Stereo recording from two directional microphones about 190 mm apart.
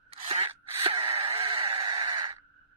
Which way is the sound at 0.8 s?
30° right (ahead or behind).